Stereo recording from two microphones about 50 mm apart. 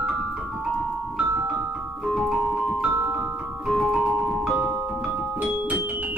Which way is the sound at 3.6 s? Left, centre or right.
Centre.